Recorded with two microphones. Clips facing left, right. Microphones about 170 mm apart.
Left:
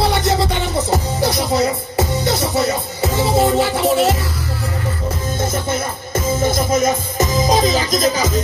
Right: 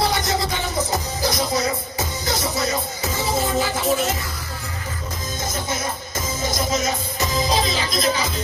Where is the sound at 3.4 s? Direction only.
70° left (ahead or behind).